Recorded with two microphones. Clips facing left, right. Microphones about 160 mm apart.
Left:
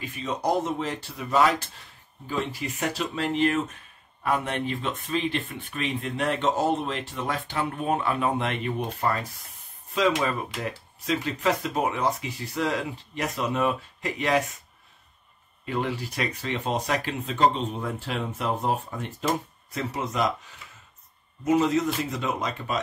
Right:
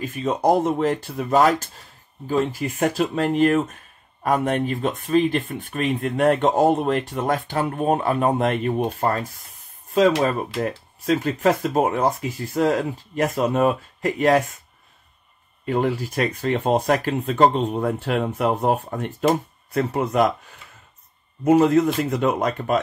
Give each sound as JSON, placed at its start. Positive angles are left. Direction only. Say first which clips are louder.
{"t": 0.0, "sound": "speech", "louder": "right 7 dB", "side_deg": -45}
{"t": 15.6, "sound": "a man's voice", "louder": "right 7 dB", "side_deg": -45}
{"t": 21.5, "sound": "a man's voice", "louder": "right 6 dB", "side_deg": -55}